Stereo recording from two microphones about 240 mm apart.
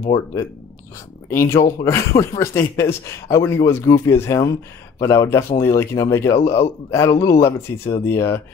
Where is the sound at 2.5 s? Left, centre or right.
Centre.